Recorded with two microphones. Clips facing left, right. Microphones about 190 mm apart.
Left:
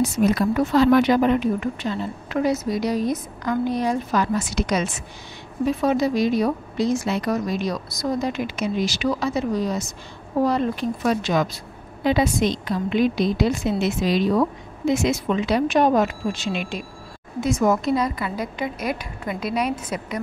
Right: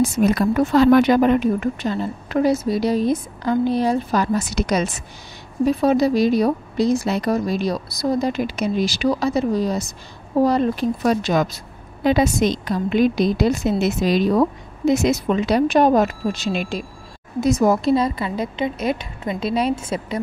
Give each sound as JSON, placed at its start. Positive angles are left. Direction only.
{"t": 0.0, "sound": "a woman's voice", "side_deg": -50}